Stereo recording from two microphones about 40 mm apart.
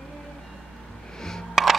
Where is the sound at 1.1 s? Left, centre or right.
Centre.